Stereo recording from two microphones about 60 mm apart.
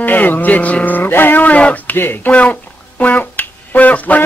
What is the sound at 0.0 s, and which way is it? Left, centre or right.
Speech, left.